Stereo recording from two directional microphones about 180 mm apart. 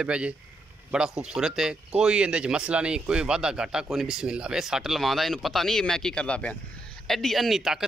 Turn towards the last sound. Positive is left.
turn(degrees=0)  # may be behind; listen again after turning